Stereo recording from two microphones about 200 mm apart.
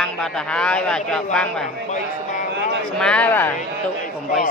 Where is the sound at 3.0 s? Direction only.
5° left (ahead or behind).